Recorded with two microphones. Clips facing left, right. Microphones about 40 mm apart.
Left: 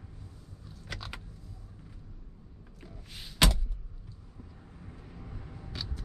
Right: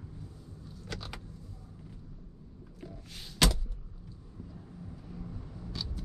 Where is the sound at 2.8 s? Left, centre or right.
Centre.